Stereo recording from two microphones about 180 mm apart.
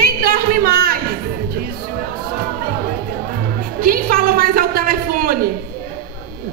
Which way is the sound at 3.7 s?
55° right (ahead or behind).